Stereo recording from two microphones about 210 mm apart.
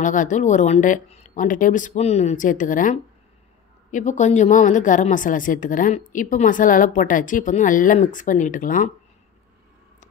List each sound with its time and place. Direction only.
0.0 s a woman's voice: 40° left (ahead or behind)